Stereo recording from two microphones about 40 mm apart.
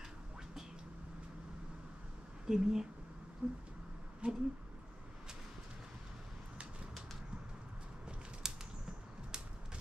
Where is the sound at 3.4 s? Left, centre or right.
Right.